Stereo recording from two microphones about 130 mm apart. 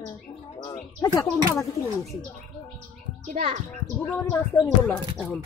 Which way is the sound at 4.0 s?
15° left (ahead or behind).